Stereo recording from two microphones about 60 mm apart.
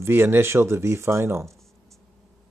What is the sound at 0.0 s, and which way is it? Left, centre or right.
Speech, right.